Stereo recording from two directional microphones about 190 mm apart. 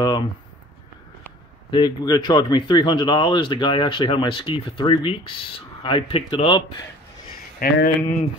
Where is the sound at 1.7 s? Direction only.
25° left (ahead or behind).